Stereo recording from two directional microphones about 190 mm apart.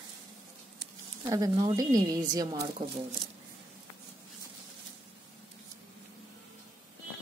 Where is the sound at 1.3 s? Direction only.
20° right (ahead or behind).